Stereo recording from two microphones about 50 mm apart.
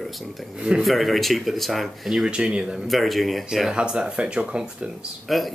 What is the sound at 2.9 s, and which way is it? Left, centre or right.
Speech, centre.